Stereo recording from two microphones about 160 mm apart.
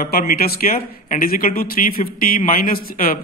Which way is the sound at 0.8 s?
55° left (ahead or behind).